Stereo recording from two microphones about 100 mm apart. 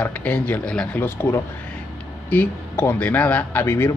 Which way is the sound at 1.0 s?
25° left (ahead or behind).